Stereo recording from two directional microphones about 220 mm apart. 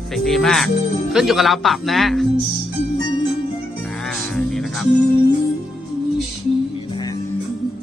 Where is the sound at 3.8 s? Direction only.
Centre (ahead or behind).